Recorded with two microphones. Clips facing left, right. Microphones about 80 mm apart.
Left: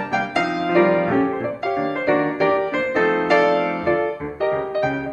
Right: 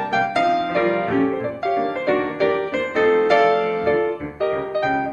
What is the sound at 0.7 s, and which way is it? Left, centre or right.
Music, left.